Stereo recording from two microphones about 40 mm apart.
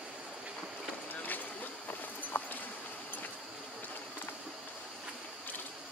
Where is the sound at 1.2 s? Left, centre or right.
Left.